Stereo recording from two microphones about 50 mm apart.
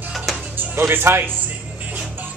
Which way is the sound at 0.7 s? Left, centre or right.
Right.